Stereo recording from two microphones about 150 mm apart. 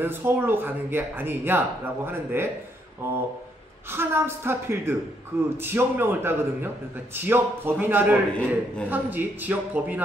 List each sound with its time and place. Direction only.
0.0 s speech: 15° right (ahead or behind)
3.9 s speech: 15° right (ahead or behind)